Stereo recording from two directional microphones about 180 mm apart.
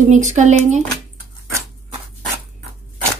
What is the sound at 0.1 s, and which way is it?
Speech, 40° right (ahead or behind).